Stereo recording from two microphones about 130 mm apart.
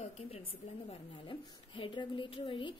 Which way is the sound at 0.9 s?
40° left (ahead or behind).